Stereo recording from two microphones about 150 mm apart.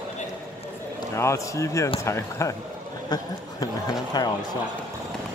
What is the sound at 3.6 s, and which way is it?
Speech, 25° left (ahead or behind).